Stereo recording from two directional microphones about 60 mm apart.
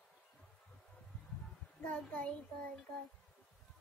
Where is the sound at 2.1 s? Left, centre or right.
Left.